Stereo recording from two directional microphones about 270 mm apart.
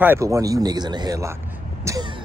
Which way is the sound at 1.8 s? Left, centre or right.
Centre.